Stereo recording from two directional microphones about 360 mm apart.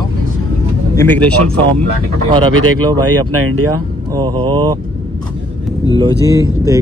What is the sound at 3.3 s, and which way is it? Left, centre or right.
Speech, right.